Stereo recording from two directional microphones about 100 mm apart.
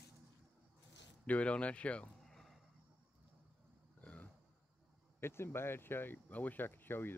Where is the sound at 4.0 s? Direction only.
10° left (ahead or behind).